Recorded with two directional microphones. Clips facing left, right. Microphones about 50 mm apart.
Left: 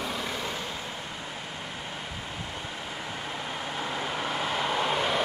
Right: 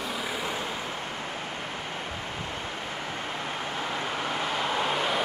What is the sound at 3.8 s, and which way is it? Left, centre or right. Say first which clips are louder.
Vehicle: even; centre.